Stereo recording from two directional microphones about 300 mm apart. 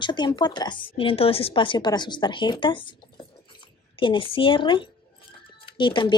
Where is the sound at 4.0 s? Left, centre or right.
Centre.